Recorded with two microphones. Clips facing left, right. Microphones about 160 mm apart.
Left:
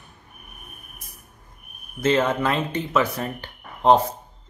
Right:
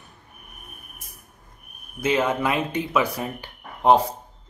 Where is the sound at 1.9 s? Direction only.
10° right (ahead or behind).